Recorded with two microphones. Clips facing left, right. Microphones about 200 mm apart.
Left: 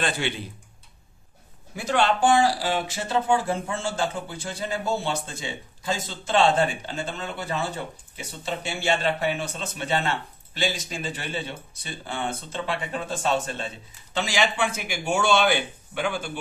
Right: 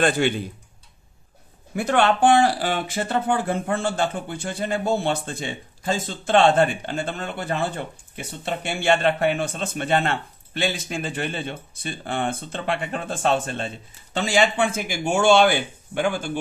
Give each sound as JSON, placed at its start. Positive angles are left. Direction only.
{"t": 1.8, "sound": "speech", "side_deg": -55}